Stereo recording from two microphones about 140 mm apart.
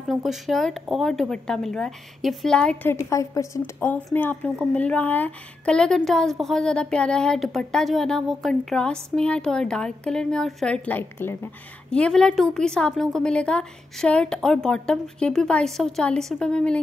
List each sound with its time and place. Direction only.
0.1 s a woman's voice: centre (ahead or behind)